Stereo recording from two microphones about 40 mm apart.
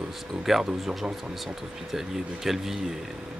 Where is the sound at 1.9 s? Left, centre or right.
Centre.